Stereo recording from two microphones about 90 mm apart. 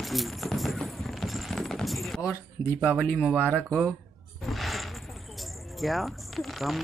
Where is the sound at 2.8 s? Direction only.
15° left (ahead or behind).